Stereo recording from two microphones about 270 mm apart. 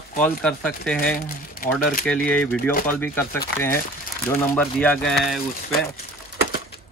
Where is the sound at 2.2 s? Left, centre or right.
Centre.